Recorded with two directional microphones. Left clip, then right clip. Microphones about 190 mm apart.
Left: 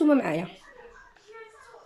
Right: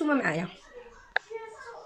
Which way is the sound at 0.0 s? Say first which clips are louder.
Left 4 dB; 15° left (ahead or behind).